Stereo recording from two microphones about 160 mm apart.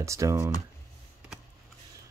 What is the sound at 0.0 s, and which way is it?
Speech, 20° right (ahead or behind).